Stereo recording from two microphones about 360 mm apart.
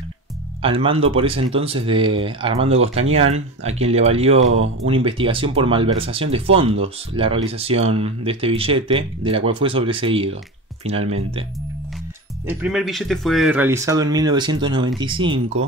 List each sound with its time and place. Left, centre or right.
0.6 s speech: centre
12.4 s speech: centre